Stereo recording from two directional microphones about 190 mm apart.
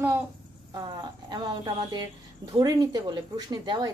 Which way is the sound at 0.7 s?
25° right (ahead or behind).